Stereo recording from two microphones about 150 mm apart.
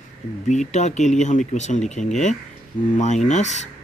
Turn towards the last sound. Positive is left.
turn(degrees=50)  # may be behind; listen again after turning